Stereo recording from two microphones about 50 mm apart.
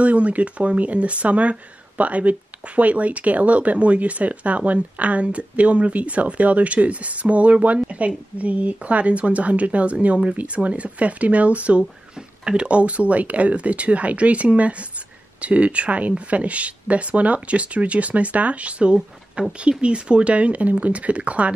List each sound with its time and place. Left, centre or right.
0.0 s speech: right